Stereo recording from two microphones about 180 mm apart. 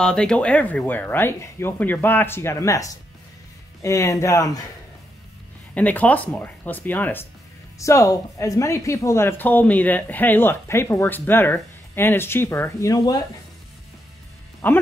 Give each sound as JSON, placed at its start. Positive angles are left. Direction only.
{"t": 0.0, "sound": "speech", "side_deg": 5}
{"t": 5.8, "sound": "speech", "side_deg": 10}
{"t": 14.6, "sound": "speech", "side_deg": 10}